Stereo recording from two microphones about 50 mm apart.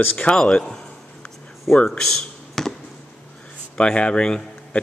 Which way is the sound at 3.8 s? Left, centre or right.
Centre.